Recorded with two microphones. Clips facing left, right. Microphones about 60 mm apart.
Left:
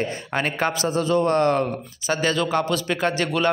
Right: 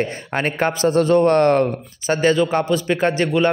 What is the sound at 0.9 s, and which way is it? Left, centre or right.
A man's voice, right.